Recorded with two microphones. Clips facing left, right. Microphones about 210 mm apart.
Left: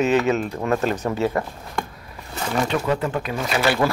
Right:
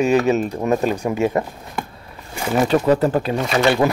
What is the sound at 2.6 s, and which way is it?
Speech, 40° right (ahead or behind).